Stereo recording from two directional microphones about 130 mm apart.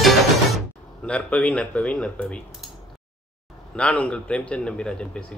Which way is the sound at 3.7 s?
10° left (ahead or behind).